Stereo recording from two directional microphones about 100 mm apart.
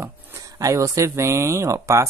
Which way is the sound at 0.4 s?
35° right (ahead or behind).